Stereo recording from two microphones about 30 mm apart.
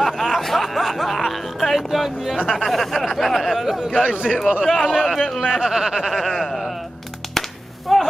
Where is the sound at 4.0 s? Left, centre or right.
Right.